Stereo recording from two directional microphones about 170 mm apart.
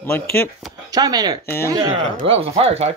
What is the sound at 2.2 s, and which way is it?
Speech, 35° right (ahead or behind).